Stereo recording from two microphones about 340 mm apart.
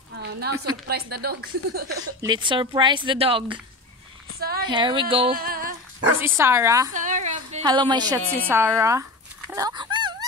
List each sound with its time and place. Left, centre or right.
0.1 s a sound: right
0.8 s a woman's voice: right
2.2 s a woman's voice: centre
4.4 s a woman's voice: right
4.6 s speech: centre
5.9 s a woman's voice: centre
6.9 s a woman's voice: right
9.5 s a sound: centre